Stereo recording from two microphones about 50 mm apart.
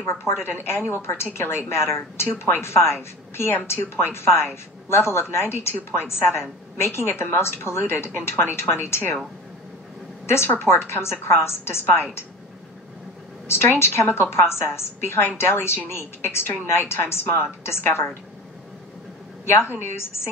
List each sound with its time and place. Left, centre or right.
0.0 s a woman's voice: left
2.2 s a woman's voice: left
10.2 s a woman's voice: left
13.5 s a woman's voice: left
19.5 s a woman's voice: left